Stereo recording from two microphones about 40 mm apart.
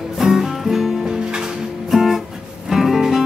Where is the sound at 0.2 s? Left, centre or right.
Centre.